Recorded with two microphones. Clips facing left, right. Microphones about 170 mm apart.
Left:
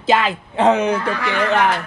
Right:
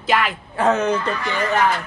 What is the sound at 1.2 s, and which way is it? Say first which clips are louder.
Speech: left 3 dB; 65° left (ahead or behind).